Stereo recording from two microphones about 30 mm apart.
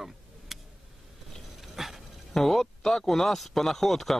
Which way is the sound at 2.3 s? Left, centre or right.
Centre.